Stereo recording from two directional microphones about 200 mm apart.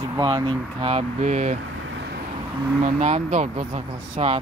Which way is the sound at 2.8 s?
30° right (ahead or behind).